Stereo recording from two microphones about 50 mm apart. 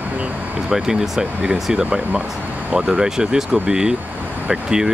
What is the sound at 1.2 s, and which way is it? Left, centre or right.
Speech, right.